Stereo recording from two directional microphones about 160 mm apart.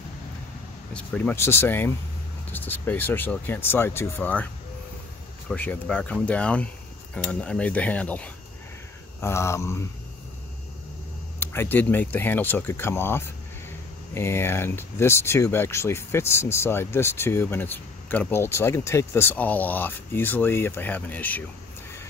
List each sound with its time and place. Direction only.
0.9 s speech: 10° left (ahead or behind)
5.5 s speech: 10° left (ahead or behind)
11.3 s speech: 15° left (ahead or behind)